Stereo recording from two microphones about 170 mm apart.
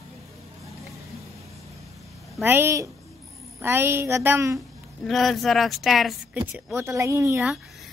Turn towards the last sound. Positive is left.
turn(degrees=-15)  # may be behind; listen again after turning